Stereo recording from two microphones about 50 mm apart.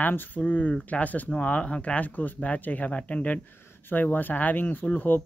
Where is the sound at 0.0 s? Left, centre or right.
Left.